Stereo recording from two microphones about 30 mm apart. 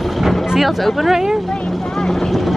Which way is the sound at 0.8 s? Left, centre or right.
Centre.